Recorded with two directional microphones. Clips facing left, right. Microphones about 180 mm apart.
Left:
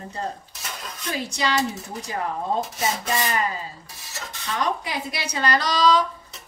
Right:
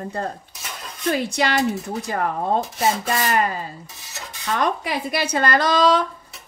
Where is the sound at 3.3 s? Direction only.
55° right (ahead or behind).